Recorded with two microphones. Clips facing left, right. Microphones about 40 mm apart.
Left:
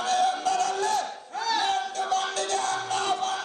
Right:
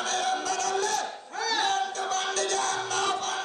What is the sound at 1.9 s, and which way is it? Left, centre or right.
Music, right.